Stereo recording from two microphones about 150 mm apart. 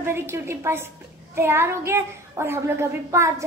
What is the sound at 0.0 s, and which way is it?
A woman's voice, 15° right (ahead or behind).